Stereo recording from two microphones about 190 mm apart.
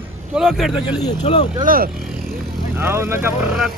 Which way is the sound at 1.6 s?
50° right (ahead or behind).